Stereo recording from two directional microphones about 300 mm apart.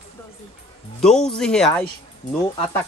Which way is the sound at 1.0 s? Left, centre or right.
Centre.